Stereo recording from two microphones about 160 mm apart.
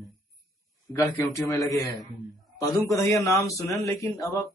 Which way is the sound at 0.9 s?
20° left (ahead or behind).